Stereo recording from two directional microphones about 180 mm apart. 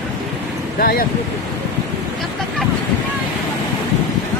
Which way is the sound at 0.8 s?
50° left (ahead or behind).